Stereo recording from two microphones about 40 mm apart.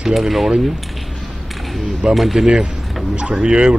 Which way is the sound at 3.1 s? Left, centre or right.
Right.